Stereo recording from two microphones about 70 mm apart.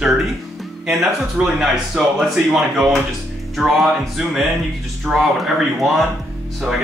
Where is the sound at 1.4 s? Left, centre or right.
Centre.